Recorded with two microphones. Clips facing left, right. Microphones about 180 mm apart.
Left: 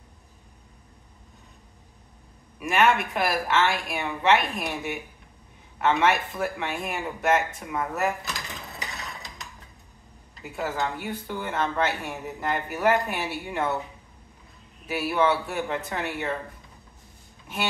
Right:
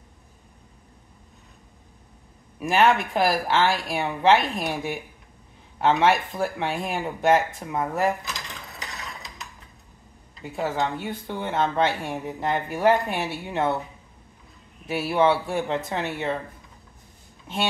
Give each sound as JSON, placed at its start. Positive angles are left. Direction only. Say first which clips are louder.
{"t": 2.6, "sound": "speech", "louder": "right 2 dB", "side_deg": -30}
{"t": 10.4, "sound": "speech", "louder": "right 3 dB", "side_deg": -25}
{"t": 14.9, "sound": "speech", "louder": "right 3 dB", "side_deg": -25}